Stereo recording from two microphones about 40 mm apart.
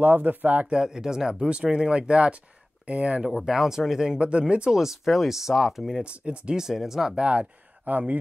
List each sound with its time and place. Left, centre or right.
0.0 s speech: right
0.7 s speech: centre
3.3 s speech: centre
4.2 s speech: right
4.7 s speech: centre
6.0 s speech: right
6.5 s speech: centre
7.2 s speech: right
7.9 s speech: right